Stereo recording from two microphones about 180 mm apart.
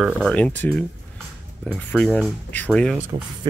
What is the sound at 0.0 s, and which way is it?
Speech, 5° left (ahead or behind).